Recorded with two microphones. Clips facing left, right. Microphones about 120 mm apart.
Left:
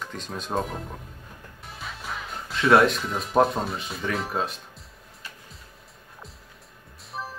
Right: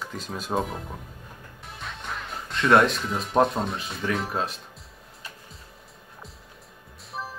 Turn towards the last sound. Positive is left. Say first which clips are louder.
# even
turn(degrees=0)  # may be behind; listen again after turning